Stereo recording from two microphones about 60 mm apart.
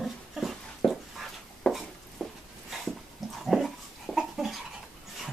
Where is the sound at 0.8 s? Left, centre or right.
Centre.